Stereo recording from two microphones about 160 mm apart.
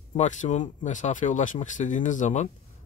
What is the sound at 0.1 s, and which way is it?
Speech, 50° left (ahead or behind).